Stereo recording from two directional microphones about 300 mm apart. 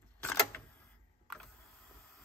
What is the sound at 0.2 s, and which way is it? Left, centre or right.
Camera, centre.